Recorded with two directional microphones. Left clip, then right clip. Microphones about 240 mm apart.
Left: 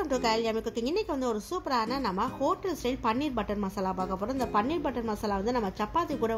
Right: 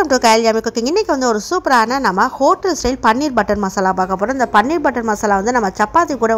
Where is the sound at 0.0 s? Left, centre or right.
Right.